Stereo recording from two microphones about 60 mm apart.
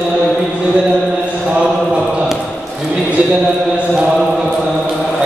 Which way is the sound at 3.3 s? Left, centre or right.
Centre.